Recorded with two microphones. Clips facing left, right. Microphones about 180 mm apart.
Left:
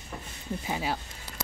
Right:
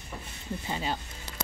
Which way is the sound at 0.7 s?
10° left (ahead or behind).